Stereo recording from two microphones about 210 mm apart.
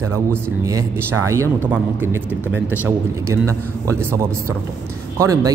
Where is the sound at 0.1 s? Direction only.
15° right (ahead or behind).